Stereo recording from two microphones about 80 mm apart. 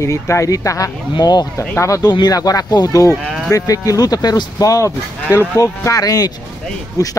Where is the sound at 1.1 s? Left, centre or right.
Left.